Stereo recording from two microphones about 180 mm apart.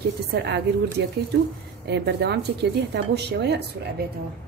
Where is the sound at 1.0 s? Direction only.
80° right.